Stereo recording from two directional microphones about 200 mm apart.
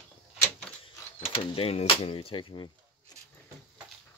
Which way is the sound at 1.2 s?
30° left (ahead or behind).